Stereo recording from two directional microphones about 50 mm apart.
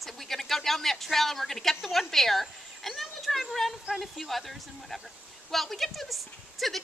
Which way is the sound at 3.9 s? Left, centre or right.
Centre.